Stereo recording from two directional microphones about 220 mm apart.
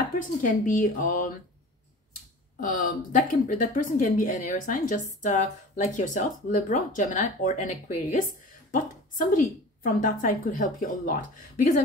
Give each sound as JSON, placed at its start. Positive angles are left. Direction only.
{"t": 0.2, "sound": "a woman's voice", "side_deg": 35}
{"t": 2.6, "sound": "a woman's voice", "side_deg": 40}